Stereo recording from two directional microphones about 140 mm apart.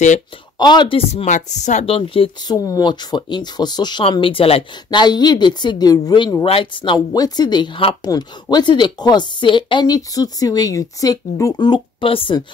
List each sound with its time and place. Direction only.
0.6 s speech: 30° left (ahead or behind)
1.2 s speech: 60° left (ahead or behind); by 2.5 s 40° left (ahead or behind)
2.5 s a woman's voice: 25° left (ahead or behind)